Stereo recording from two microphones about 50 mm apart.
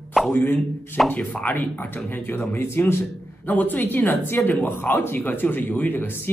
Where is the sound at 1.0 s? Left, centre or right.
Left.